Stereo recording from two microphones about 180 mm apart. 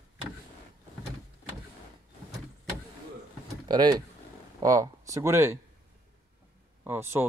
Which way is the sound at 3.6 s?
20° right (ahead or behind).